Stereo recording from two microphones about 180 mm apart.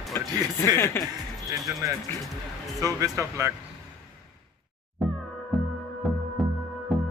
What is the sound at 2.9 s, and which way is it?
Speech, 15° right (ahead or behind).